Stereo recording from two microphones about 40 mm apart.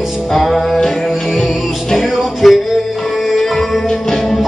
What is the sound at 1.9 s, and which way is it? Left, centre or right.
Music, centre.